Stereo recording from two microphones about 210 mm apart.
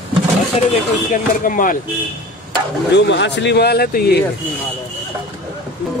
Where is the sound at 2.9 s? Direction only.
55° left (ahead or behind).